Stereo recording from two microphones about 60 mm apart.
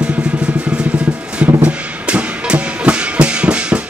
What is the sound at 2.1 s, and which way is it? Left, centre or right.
Music, centre.